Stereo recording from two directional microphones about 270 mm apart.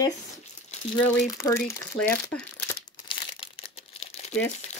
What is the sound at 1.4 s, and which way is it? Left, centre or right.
Speech, centre.